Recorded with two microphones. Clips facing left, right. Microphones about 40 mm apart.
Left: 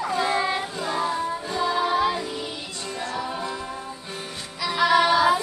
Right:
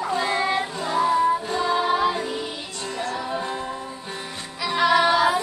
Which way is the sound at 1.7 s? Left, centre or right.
Centre.